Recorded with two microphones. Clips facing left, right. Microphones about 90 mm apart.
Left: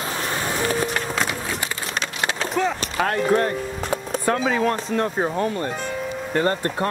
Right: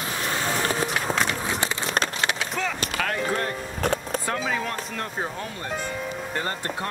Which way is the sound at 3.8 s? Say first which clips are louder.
Right 2 dB; 60° right (ahead or behind).